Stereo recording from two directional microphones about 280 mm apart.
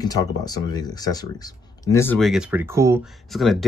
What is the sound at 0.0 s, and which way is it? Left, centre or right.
Speech, centre.